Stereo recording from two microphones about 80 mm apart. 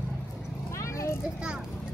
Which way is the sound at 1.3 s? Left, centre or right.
Centre.